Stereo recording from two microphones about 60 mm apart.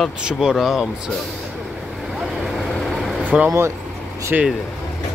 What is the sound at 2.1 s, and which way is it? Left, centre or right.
Vehicle, centre.